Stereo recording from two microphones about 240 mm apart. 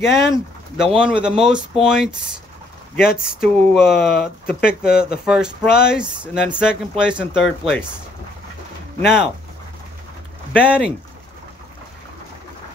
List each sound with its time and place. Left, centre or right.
0.0 s speech: centre
3.0 s speech: left
3.4 s speech: centre
4.5 s speech: left
5.2 s speech: centre
9.0 s speech: centre
10.5 s speech: centre